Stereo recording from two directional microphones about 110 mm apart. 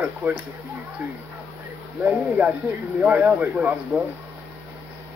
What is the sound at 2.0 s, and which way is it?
Speech, 10° right (ahead or behind).